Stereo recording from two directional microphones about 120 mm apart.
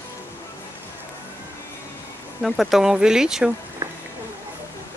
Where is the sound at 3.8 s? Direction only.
25° right (ahead or behind).